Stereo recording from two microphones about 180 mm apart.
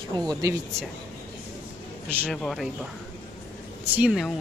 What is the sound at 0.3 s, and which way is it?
Speech, 20° right (ahead or behind).